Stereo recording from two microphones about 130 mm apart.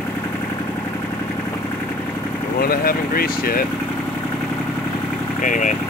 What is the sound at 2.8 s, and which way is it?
Speech, 90° left.